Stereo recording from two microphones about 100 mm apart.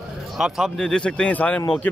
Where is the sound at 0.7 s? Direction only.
10° left (ahead or behind).